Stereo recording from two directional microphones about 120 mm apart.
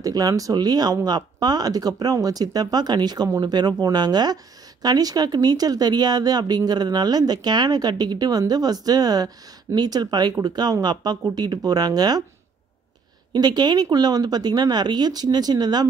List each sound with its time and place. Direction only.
0.0 s speech: 30° right (ahead or behind)
13.3 s speech: 35° right (ahead or behind)